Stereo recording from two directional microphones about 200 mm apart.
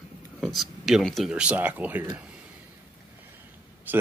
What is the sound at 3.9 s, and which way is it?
Speech, 10° right (ahead or behind).